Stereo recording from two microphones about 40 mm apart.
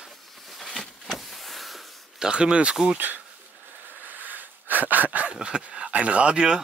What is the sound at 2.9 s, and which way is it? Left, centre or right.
Speech, right.